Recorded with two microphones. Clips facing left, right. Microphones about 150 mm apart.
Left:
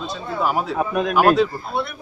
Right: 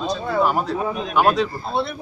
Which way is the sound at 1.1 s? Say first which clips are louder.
Left 2 dB; centre (ahead or behind).